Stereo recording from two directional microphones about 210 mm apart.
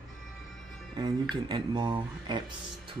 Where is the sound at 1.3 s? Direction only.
20° right (ahead or behind).